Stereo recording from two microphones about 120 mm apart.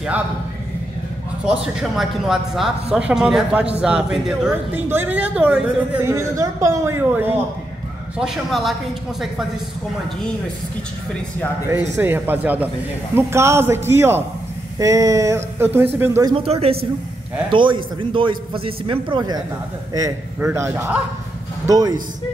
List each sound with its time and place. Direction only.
1.5 s a woman's voice: 5° right (ahead or behind)
8.2 s speech: centre (ahead or behind)
12.0 s a woman's voice: 15° right (ahead or behind)
16.3 s speech: 55° right (ahead or behind)
17.5 s a man's voice: 45° right (ahead or behind)
20.3 s speech: 20° right (ahead or behind)